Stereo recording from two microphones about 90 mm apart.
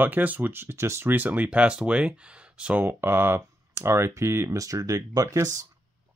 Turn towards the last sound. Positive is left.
turn(degrees=-40)  # may be behind; listen again after turning